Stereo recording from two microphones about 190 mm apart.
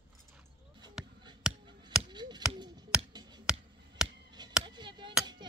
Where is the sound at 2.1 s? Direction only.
25° right (ahead or behind).